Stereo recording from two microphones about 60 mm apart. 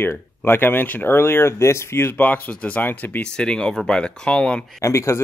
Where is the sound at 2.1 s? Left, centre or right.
Left.